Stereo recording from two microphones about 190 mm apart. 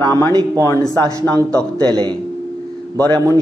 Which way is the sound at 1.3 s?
20° right (ahead or behind).